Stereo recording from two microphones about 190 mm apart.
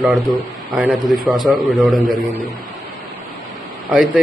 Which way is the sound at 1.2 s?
20° right (ahead or behind).